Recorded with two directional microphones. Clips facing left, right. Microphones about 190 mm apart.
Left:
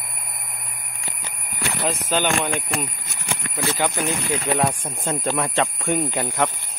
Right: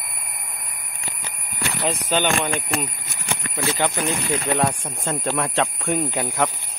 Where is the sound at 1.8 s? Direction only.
Centre (ahead or behind).